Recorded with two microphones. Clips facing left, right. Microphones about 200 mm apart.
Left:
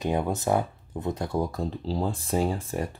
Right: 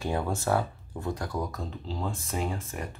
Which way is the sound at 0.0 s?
20° left (ahead or behind).